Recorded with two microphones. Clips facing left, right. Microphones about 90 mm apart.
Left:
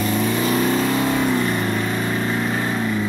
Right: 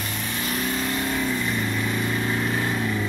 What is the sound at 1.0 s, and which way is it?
Vehicle, 90° left.